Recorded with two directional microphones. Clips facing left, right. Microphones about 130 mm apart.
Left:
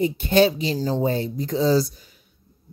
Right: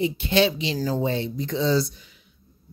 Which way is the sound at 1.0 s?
40° left (ahead or behind).